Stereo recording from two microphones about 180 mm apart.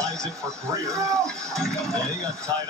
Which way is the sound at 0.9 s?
15° right (ahead or behind).